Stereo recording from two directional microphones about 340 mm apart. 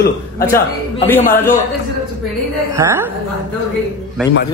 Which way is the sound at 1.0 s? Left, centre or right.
Centre.